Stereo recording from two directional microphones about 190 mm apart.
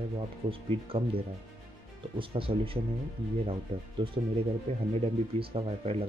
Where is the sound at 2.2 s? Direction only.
30° right (ahead or behind).